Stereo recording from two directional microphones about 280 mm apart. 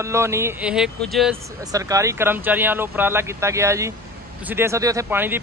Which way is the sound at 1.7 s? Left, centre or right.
Centre.